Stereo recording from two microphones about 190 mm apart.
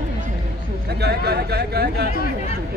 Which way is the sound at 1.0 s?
60° right (ahead or behind).